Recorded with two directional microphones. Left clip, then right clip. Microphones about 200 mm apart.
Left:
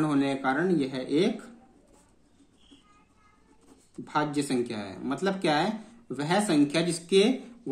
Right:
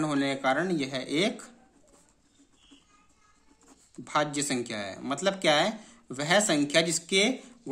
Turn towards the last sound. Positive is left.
turn(degrees=-25)  # may be behind; listen again after turning